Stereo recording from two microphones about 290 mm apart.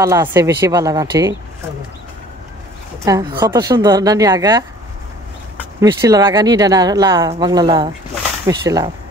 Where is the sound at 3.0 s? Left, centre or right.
Centre.